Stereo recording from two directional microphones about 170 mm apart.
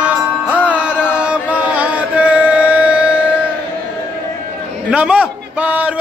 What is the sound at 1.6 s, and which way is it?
Music, 5° right (ahead or behind).